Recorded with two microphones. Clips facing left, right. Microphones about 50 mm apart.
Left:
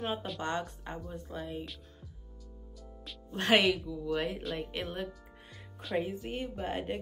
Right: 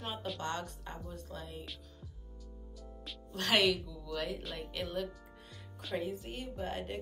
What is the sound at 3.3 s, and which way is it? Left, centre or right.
Speech, left.